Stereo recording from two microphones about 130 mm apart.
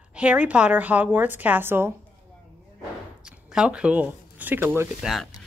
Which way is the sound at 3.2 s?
5° right (ahead or behind).